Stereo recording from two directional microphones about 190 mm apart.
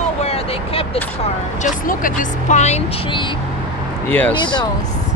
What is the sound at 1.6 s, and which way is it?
Speech, 45° left (ahead or behind).